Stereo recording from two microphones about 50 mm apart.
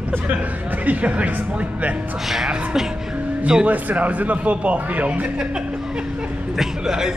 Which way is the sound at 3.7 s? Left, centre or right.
Right.